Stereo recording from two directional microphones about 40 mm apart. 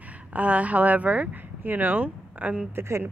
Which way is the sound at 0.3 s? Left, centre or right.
Right.